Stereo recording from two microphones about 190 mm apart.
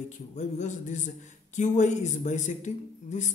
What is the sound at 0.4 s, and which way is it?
Speech, 40° left (ahead or behind).